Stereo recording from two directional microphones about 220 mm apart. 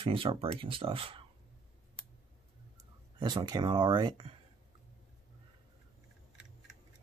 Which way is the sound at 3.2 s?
20° right (ahead or behind).